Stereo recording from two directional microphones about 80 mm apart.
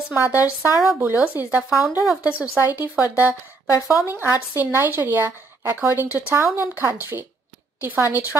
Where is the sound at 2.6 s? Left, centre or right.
Right.